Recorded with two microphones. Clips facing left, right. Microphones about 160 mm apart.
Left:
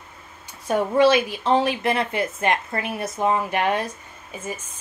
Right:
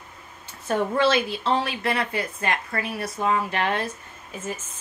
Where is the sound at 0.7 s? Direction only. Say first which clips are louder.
Left 4 dB; 15° left (ahead or behind).